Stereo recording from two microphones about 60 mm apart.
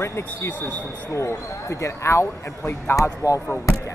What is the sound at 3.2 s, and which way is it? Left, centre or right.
Speech, left.